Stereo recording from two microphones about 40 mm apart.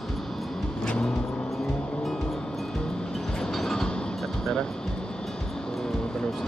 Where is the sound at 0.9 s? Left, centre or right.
Left.